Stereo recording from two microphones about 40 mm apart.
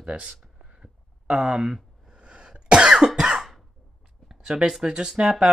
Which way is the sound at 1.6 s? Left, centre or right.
Centre.